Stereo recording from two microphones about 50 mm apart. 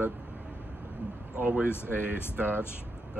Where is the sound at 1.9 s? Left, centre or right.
Right.